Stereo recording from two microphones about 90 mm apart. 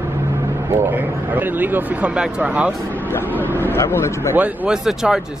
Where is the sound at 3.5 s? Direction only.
25° left (ahead or behind).